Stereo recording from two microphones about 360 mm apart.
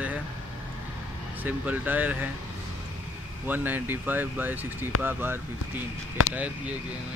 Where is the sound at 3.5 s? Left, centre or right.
Centre.